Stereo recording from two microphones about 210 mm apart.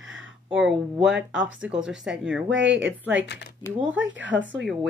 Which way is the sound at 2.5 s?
60° right (ahead or behind).